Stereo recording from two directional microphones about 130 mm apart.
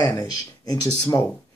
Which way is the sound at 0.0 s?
30° left (ahead or behind).